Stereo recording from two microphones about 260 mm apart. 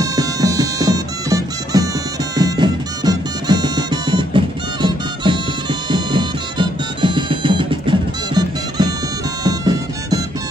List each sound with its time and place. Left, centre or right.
0.0 s music: centre